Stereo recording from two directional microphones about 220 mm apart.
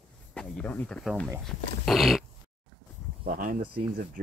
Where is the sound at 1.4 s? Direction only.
Centre (ahead or behind).